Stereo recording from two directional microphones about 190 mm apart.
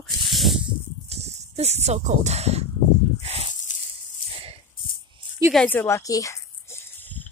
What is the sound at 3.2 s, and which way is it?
Snake, 35° right (ahead or behind).